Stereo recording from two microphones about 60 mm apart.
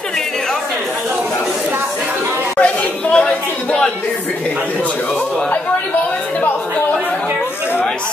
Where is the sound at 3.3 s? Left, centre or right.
Centre.